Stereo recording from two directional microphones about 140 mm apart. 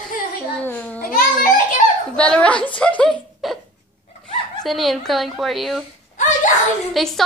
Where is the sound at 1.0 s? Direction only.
85° left.